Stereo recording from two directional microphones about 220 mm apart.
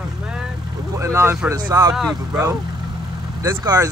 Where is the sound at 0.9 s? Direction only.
15° right (ahead or behind).